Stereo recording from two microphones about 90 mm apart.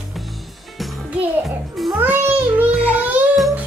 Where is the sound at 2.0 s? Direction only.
20° right (ahead or behind).